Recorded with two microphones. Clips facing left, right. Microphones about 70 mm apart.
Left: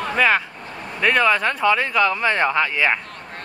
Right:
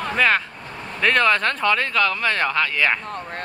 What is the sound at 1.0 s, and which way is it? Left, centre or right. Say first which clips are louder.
Speech: left 1 dB; centre.